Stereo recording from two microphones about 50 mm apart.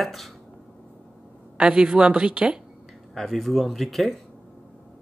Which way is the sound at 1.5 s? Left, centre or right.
Centre.